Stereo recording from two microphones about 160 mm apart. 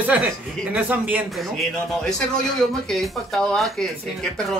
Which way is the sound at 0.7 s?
10° right (ahead or behind).